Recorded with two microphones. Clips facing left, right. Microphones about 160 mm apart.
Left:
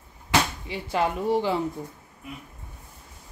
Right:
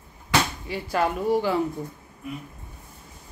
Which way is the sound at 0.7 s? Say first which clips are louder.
Right 1 dB; 20° left (ahead or behind).